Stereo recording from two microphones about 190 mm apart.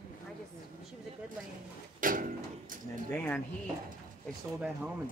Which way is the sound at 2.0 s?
45° right (ahead or behind).